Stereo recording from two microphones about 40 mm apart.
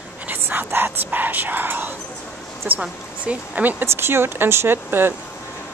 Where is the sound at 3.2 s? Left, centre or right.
Right.